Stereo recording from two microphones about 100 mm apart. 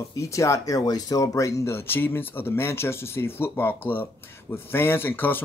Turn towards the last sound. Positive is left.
turn(degrees=20)  # may be behind; listen again after turning